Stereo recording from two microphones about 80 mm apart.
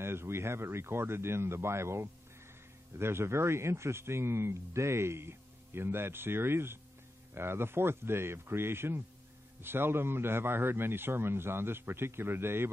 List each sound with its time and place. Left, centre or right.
0.0 s a man's voice: right